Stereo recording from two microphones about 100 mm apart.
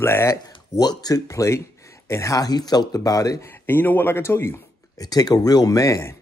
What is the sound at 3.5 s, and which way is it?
Speech, 20° left (ahead or behind).